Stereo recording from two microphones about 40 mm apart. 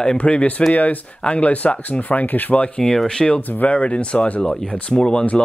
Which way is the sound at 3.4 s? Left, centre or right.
Left.